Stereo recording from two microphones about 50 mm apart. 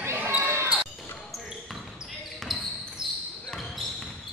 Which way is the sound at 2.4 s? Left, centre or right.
Centre.